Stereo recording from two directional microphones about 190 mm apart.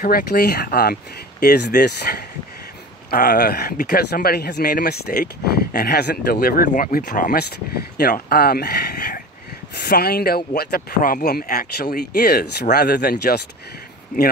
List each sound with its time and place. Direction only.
0.0 s speech: 55° left (ahead or behind)